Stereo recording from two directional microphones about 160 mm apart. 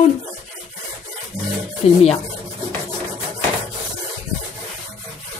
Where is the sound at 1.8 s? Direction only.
40° left (ahead or behind).